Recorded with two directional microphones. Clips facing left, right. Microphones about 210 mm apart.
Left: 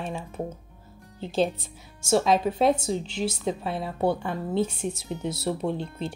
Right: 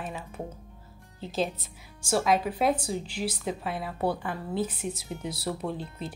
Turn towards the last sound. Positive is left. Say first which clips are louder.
# left 5 dB
turn(degrees=25)  # may be behind; listen again after turning